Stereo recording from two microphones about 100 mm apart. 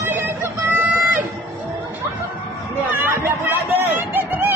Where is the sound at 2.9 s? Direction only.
20° right (ahead or behind).